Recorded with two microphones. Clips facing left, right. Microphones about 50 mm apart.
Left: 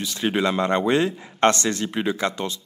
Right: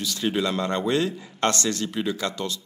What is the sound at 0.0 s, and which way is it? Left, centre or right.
Speech, left.